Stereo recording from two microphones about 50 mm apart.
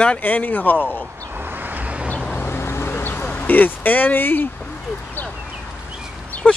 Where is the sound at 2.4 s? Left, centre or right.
Left.